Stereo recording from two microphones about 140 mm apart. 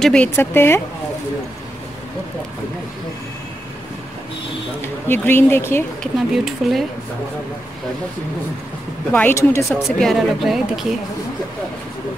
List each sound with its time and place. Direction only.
0.0 s speech: 5° left (ahead or behind)
0.4 s speech: 15° left (ahead or behind)
4.8 s speech: 15° left (ahead or behind)
6.1 s speech: centre (ahead or behind)
9.1 s speech: 15° left (ahead or behind)
9.9 s speech: centre (ahead or behind)